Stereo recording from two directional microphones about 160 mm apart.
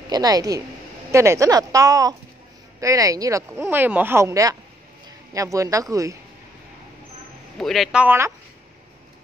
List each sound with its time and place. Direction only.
0.1 s speech: 25° right (ahead or behind)
7.5 s a man's voice: centre (ahead or behind)